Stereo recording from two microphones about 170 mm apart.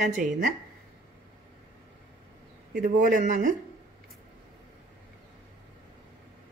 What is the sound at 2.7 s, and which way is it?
Speech, 55° right (ahead or behind).